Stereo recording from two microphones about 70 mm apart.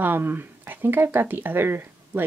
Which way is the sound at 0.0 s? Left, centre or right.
Right.